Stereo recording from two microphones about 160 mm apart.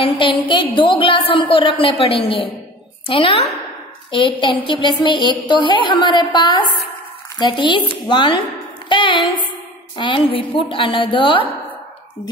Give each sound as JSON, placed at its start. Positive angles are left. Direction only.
{"t": 0.0, "sound": "a woman's voice", "side_deg": 30}